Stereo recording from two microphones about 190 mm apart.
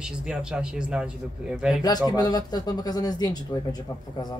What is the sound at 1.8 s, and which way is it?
Speech, 20° left (ahead or behind).